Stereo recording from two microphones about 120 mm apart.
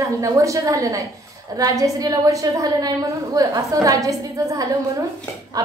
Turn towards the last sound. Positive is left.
turn(degrees=-30)  # may be behind; listen again after turning